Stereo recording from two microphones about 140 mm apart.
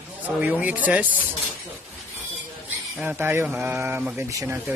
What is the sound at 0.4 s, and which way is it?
Speech, 10° right (ahead or behind).